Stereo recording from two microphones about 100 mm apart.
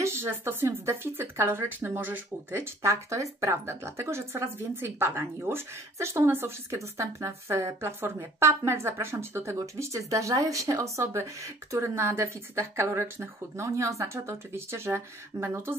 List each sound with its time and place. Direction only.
0.0 s speech: 25° right (ahead or behind)